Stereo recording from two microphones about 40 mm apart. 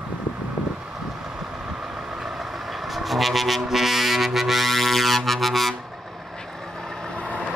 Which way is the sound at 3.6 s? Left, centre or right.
Centre.